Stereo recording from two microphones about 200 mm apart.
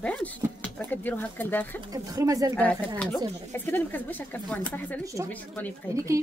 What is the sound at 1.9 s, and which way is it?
Speech, 15° right (ahead or behind).